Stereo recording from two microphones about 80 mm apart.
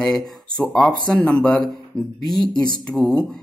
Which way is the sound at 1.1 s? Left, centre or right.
Centre.